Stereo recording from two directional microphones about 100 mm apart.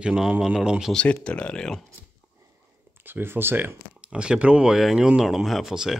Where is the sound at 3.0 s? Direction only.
20° right (ahead or behind).